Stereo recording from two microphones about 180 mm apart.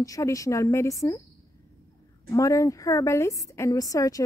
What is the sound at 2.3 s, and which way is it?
A woman's voice, 15° left (ahead or behind).